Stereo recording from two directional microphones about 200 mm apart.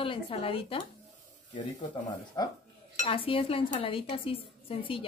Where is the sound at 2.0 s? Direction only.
20° left (ahead or behind).